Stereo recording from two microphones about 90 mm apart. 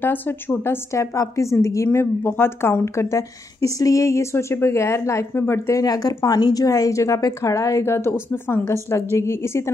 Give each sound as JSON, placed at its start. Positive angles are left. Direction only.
{"t": 0.0, "sound": "a woman's voice", "side_deg": 20}
{"t": 1.1, "sound": "a woman's voice", "side_deg": 35}
{"t": 5.8, "sound": "a woman's voice", "side_deg": 45}